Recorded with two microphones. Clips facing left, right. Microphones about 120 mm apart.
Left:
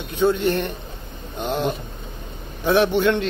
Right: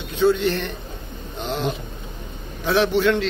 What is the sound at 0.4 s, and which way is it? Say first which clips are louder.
Speech: left 2 dB; 50° left (ahead or behind).